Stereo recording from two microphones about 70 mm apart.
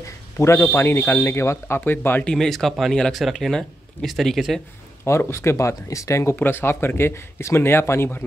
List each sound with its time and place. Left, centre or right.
0.4 s a man's voice: left
2.3 s speech: centre
5.0 s speech: left